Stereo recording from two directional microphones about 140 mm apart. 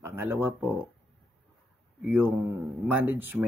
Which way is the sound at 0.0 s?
15° right (ahead or behind).